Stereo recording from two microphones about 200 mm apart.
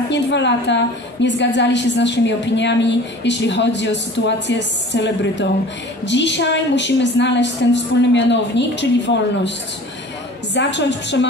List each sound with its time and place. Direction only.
0.1 s a woman's voice: 65° left (ahead or behind)
10.5 s a woman's voice: 60° left (ahead or behind)